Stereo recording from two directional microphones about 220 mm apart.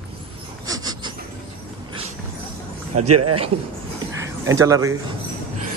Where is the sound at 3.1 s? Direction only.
90° right.